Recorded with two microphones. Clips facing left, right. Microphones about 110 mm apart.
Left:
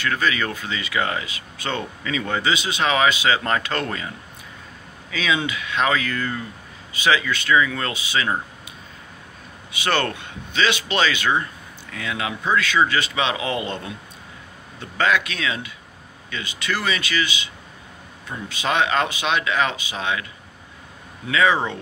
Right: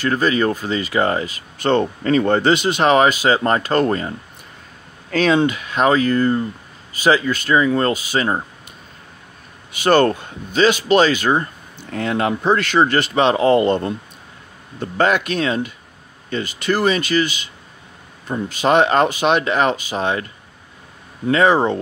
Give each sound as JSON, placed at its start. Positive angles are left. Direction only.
{"t": 0.0, "sound": "speech", "side_deg": -40}
{"t": 5.1, "sound": "speech", "side_deg": -50}
{"t": 9.8, "sound": "speech", "side_deg": -40}
{"t": 18.3, "sound": "speech", "side_deg": -45}
{"t": 21.3, "sound": "speech", "side_deg": -45}